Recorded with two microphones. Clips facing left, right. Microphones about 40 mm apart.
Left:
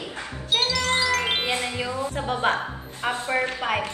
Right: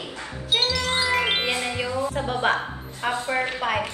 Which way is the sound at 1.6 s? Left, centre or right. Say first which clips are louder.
Right 2 dB; right.